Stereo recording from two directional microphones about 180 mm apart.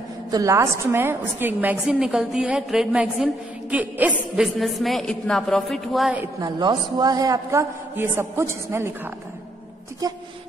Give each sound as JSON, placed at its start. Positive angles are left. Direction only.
{"t": 0.3, "sound": "a woman's voice", "side_deg": -20}
{"t": 6.4, "sound": "a woman's voice", "side_deg": -20}
{"t": 10.0, "sound": "speech", "side_deg": -20}